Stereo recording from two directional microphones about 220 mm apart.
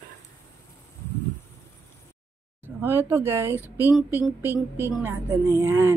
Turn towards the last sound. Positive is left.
turn(degrees=-10)  # may be behind; listen again after turning